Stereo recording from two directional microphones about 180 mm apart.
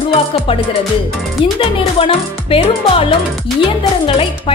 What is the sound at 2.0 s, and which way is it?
Speech, 30° left (ahead or behind).